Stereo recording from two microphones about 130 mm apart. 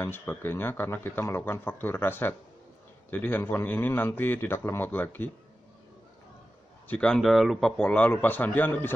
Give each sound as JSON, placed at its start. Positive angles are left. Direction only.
{"t": 0.0, "sound": "speech", "side_deg": 15}
{"t": 6.9, "sound": "speech", "side_deg": 5}